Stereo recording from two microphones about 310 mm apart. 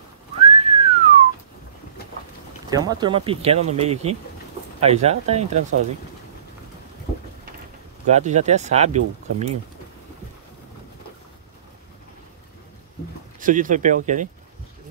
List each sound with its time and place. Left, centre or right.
0.4 s whistling: centre
2.7 s speech: centre
8.1 s speech: right
13.4 s speech: right